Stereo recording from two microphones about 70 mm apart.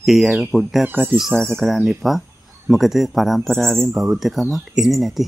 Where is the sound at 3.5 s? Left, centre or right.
Centre.